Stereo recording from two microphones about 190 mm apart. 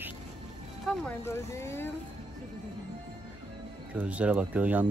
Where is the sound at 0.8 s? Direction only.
Centre (ahead or behind).